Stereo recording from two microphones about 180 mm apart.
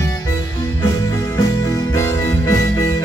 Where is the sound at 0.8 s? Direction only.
20° left (ahead or behind).